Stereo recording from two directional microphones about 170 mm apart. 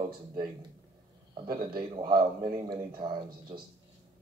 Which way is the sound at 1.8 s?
25° right (ahead or behind).